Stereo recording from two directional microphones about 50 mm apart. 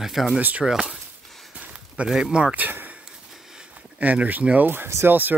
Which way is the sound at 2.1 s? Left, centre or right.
Centre.